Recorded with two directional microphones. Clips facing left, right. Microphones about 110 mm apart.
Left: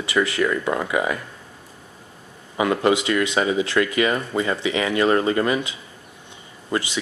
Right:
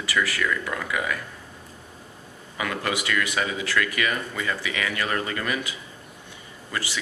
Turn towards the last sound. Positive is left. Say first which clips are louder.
# left 7 dB
turn(degrees=20)  # may be behind; listen again after turning